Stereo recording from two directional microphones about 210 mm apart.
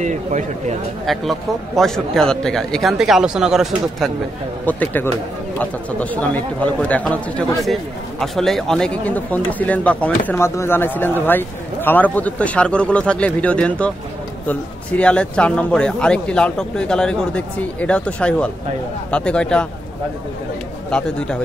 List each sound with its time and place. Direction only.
0.0 s speech: 35° right (ahead or behind)
1.0 s speech: centre (ahead or behind)
20.9 s speech: 5° left (ahead or behind)